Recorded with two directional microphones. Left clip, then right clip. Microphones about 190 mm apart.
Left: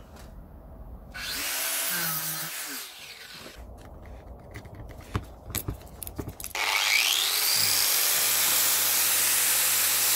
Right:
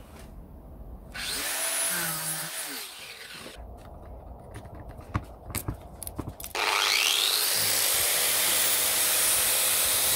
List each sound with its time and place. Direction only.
1.3 s tools: 5° right (ahead or behind)
3.0 s a sound: 25° right (ahead or behind)
5.5 s biting: centre (ahead or behind)
6.4 s wood: 10° right (ahead or behind)